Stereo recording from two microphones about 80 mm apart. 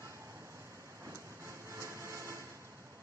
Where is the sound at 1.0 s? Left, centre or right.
Right.